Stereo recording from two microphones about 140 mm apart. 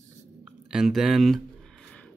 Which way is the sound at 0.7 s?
5° right (ahead or behind).